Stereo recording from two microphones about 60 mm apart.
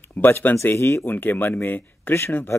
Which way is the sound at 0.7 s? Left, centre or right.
Left.